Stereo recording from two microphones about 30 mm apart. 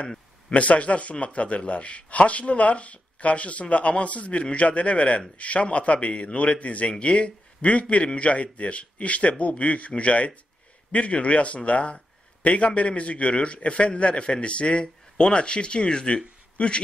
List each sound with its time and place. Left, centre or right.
0.5 s a man's voice: left